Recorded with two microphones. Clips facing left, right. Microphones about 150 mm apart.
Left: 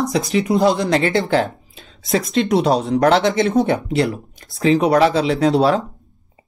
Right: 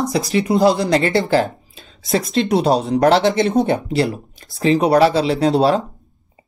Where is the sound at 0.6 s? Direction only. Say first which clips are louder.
Right 1 dB; 35° right (ahead or behind).